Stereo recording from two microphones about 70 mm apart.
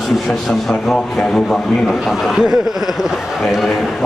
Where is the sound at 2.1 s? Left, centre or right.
Centre.